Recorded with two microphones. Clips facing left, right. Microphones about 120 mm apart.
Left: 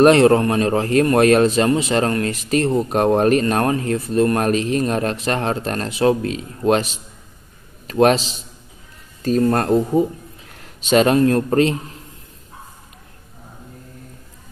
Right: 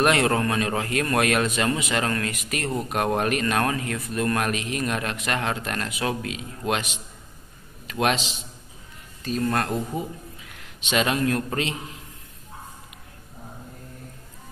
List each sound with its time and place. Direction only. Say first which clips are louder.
0.0 s a man's voice: left 9 dB; 30° left (ahead or behind)
9.4 s a man's voice: left 8 dB; 35° left (ahead or behind)